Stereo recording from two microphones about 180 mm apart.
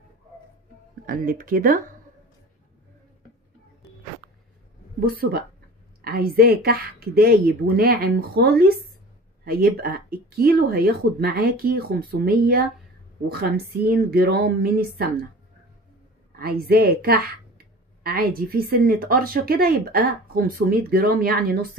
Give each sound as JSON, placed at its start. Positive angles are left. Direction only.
{"t": 1.0, "sound": "speech", "side_deg": -50}
{"t": 5.0, "sound": "speech", "side_deg": -55}
{"t": 16.3, "sound": "speech", "side_deg": -55}